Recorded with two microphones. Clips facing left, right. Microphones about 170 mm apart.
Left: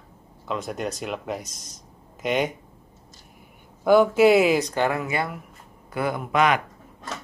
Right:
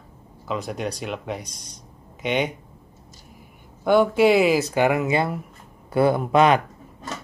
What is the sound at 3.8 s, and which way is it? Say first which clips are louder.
Speech: left 1 dB; centre (ahead or behind).